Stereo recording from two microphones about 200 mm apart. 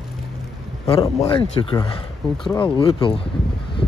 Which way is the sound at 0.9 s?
25° left (ahead or behind).